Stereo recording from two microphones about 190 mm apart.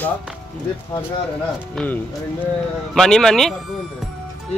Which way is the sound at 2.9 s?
Centre (ahead or behind).